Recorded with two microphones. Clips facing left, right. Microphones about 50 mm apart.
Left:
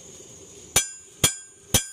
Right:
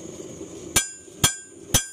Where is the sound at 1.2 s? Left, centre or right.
Centre.